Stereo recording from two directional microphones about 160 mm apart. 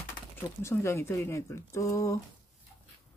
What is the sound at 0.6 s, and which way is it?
Speech, 15° left (ahead or behind).